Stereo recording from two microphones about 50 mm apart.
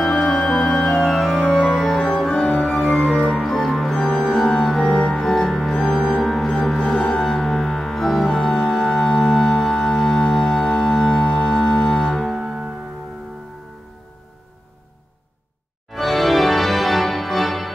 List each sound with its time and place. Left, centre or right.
0.2 s music: centre
1.4 s music: centre
2.9 s organ: centre
5.9 s organ: centre
6.2 s music: centre
15.9 s organ: centre